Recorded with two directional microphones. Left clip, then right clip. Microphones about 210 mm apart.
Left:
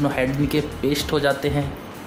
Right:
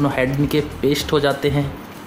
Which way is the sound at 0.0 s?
25° right (ahead or behind).